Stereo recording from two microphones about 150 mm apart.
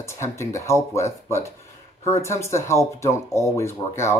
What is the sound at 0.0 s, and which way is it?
Speech, 20° left (ahead or behind).